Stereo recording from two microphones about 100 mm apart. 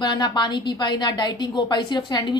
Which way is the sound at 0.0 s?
45° left (ahead or behind).